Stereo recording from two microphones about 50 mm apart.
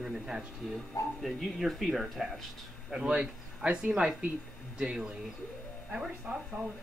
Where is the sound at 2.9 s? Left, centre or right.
Centre.